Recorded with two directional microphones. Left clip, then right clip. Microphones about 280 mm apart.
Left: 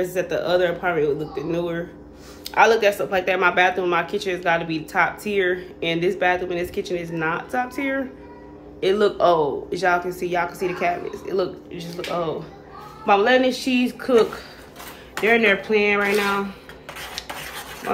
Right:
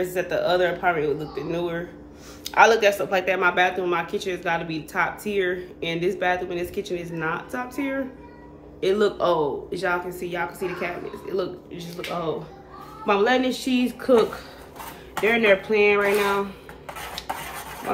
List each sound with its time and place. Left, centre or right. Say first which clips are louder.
0.0 s speech: left 1 dB; centre
17.9 s speech: left 2 dB; centre